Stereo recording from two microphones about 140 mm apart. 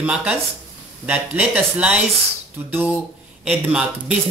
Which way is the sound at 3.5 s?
10° right (ahead or behind).